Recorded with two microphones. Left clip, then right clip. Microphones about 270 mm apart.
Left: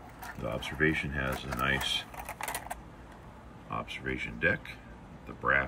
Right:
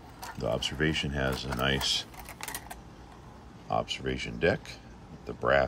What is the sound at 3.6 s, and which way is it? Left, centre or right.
Speech, centre.